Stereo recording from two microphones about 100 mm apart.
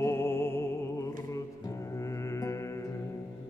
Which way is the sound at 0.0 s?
25° left (ahead or behind).